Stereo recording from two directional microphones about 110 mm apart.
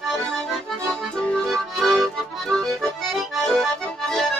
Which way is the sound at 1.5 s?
Centre (ahead or behind).